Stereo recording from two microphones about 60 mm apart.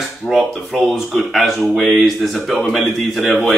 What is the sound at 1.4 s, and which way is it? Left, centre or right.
A man's voice, centre.